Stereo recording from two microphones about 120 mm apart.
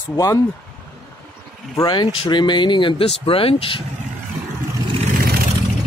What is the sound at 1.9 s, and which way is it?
Speech, 40° left (ahead or behind).